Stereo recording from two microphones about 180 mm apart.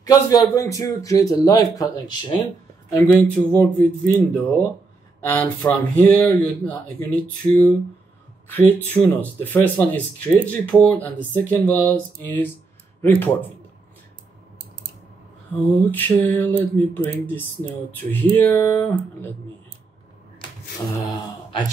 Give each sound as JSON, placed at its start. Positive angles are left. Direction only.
{"t": 0.0, "sound": "a man's voice", "side_deg": 20}
{"t": 3.1, "sound": "speech", "side_deg": 10}
{"t": 8.5, "sound": "speech", "side_deg": 10}
{"t": 15.8, "sound": "speech", "side_deg": 10}
{"t": 21.0, "sound": "speech", "side_deg": 20}